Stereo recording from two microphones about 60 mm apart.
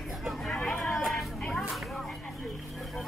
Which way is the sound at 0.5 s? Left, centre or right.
Left.